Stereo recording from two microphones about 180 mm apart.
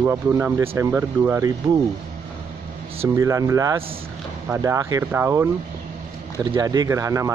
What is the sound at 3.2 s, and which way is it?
Speech, 15° right (ahead or behind).